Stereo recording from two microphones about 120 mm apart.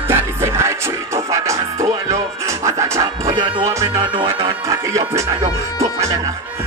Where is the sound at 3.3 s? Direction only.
25° right (ahead or behind).